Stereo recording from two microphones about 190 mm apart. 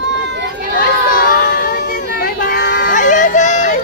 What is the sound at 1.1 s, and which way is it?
Child singing, 45° left (ahead or behind).